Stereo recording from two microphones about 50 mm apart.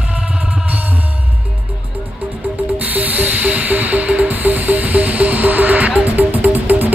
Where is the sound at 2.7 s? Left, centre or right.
Right.